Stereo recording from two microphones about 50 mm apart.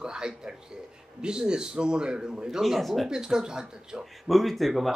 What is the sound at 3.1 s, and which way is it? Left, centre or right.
Speech, centre.